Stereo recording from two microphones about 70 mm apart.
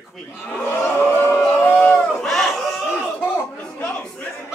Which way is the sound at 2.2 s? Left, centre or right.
Centre.